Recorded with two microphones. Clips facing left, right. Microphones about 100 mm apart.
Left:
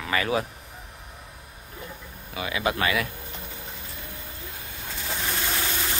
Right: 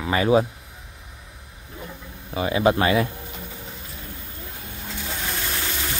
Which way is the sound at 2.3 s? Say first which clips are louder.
Right 7 dB; 30° right (ahead or behind).